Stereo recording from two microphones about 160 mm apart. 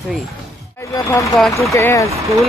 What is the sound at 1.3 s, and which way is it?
Speech, centre (ahead or behind).